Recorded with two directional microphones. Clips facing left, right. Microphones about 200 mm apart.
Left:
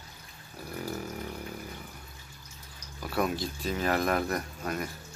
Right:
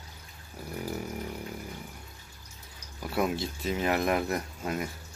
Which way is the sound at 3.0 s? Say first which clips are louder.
Right 1 dB; 25° right (ahead or behind).